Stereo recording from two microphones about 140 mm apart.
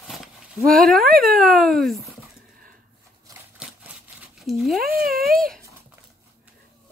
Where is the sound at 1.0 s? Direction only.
90° right.